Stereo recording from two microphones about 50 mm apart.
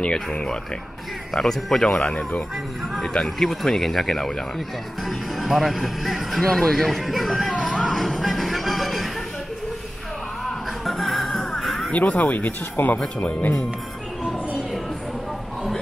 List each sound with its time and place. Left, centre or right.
0.0 s speech: centre
1.3 s speech: centre
5.0 s music: centre
10.9 s music: centre
11.9 s speech: left